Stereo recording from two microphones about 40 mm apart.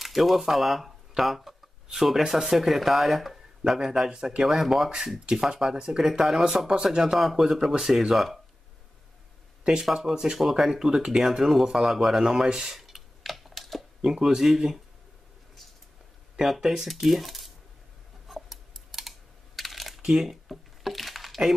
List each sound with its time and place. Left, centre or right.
0.0 s speech: centre
5.9 s speech: centre
10.3 s speech: centre
11.6 s typing: centre
14.0 s speech: centre
16.3 s speech: centre
18.3 s computer keyboard: centre
20.0 s speech: centre
20.4 s a sound: centre